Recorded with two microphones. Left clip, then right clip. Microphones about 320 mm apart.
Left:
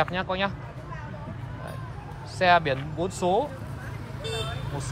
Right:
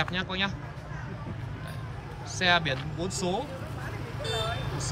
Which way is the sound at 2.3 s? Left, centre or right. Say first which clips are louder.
Left 4 dB; centre.